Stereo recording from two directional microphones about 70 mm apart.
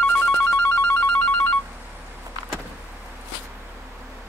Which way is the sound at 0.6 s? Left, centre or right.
Left.